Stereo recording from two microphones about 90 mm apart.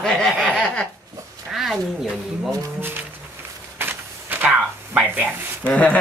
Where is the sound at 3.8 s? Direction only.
20° right (ahead or behind).